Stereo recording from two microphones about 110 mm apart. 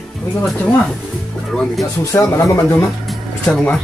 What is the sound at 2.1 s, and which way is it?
Speech, 30° left (ahead or behind).